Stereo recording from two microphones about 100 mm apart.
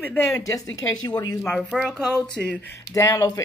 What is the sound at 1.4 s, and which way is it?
Speech, 10° left (ahead or behind).